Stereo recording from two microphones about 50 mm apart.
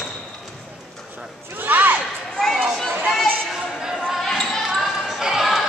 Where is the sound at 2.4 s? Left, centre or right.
Centre.